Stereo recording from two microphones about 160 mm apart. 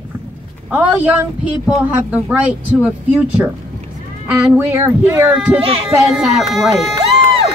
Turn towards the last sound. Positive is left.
turn(degrees=-35)  # may be behind; listen again after turning